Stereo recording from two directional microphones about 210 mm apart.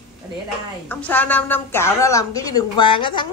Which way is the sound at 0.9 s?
10° left (ahead or behind).